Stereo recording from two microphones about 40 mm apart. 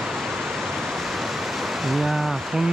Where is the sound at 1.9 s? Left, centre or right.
Centre.